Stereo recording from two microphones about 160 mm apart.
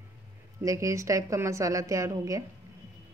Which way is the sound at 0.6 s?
20° right (ahead or behind).